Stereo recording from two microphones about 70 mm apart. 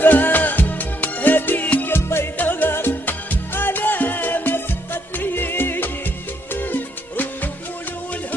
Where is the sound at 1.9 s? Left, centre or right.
Left.